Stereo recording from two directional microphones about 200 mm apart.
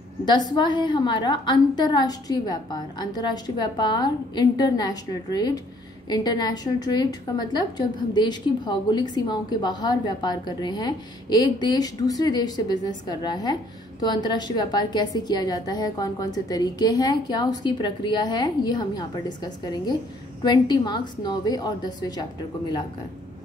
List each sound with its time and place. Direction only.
0.2 s a woman's voice: 20° left (ahead or behind)